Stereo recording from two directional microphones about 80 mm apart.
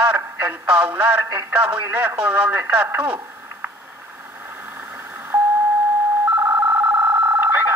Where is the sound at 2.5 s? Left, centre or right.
Right.